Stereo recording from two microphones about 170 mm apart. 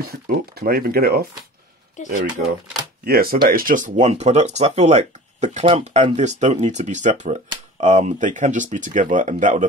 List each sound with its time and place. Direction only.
0.0 s speech: 65° right (ahead or behind)
2.0 s speech: 45° left (ahead or behind)
3.1 s speech: 65° right (ahead or behind); by 6.1 s 30° right (ahead or behind)
6.1 s speech: 45° right (ahead or behind)